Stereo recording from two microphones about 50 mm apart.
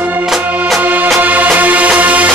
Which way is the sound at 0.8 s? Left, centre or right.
Right.